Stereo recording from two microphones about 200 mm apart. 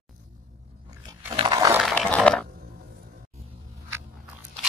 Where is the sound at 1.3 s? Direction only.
20° right (ahead or behind).